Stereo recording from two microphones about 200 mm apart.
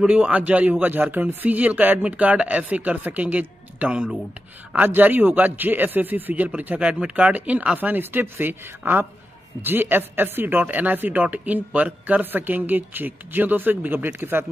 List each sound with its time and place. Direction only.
0.0 s a woman's voice: 5° right (ahead or behind)